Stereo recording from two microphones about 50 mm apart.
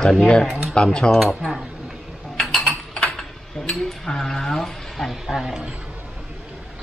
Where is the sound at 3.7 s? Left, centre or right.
Centre.